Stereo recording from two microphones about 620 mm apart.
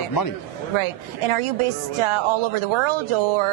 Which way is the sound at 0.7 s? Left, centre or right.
Right.